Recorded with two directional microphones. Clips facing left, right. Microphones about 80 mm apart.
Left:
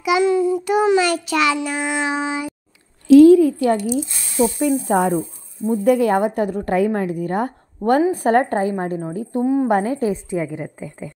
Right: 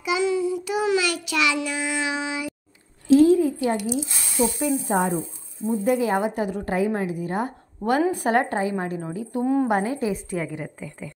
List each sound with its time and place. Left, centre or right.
0.2 s a woman's voice: left
0.8 s child singing: left
3.1 s a sound: left
4.6 s a woman's voice: left
8.1 s child singing: left
9.4 s speech: centre
9.7 s child singing: left
10.8 s speech: left